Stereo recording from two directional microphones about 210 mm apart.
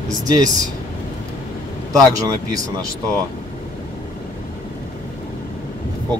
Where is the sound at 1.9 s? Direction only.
15° right (ahead or behind).